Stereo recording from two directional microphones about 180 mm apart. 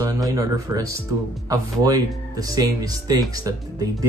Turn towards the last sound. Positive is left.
turn(degrees=-20)  # may be behind; listen again after turning